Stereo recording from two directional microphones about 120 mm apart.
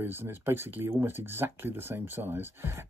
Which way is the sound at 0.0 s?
20° right (ahead or behind).